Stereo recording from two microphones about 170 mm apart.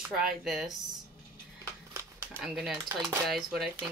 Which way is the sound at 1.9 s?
15° right (ahead or behind).